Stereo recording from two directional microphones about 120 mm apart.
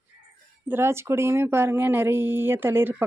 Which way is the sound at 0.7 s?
20° right (ahead or behind).